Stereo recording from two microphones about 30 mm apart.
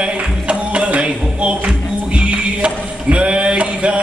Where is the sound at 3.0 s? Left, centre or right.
Right.